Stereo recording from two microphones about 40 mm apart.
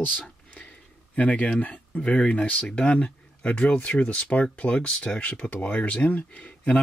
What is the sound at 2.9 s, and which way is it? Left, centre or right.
Speech, left.